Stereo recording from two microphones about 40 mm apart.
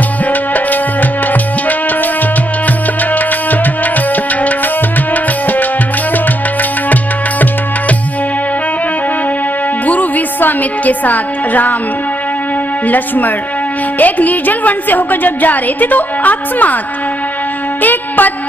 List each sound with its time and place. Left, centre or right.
3.2 s music: left
9.8 s music: left
12.8 s a woman's voice: left
17.8 s music: left